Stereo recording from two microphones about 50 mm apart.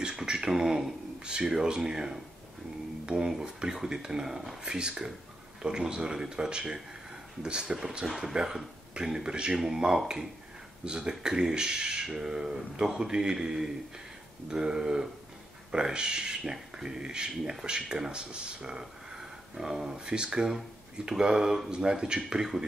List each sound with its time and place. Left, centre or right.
0.0 s speech: centre